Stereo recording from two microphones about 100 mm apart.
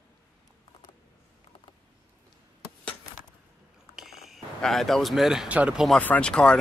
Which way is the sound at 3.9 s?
Centre (ahead or behind).